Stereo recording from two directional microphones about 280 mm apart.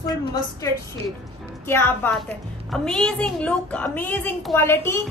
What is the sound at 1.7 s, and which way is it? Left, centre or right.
A woman's voice, centre.